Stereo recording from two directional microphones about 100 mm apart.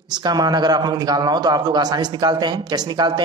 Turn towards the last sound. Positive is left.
turn(degrees=-45)  # may be behind; listen again after turning